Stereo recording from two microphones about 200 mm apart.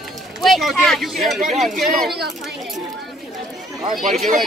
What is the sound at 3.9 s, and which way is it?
Speech, centre (ahead or behind).